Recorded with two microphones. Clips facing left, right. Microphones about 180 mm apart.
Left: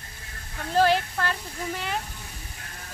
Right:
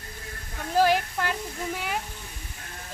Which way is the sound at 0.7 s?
10° right (ahead or behind).